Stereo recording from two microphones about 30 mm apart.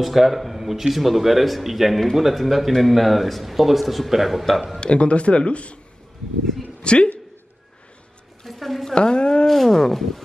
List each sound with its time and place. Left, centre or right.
0.0 s speech: centre
4.7 s speech: left
6.8 s a woman's voice: left
8.5 s a sound: centre
8.9 s speech: left
9.5 s a sound: centre